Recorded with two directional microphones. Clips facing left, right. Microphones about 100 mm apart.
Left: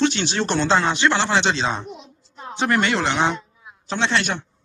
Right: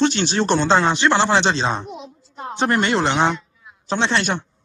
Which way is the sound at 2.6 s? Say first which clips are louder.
Right 2 dB; 30° right (ahead or behind).